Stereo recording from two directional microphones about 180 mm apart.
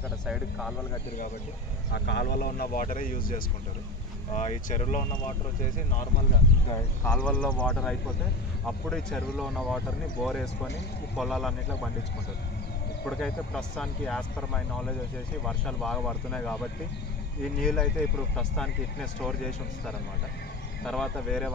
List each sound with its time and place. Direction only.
0.3 s speech: centre (ahead or behind)
2.0 s speech: 65° left (ahead or behind)
4.4 s speech: 40° left (ahead or behind)
7.1 s speech: 5° left (ahead or behind)
13.0 s speech: 5° left (ahead or behind)